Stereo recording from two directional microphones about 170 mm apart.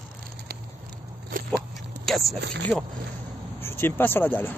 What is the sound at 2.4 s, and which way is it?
Speech, 90° right.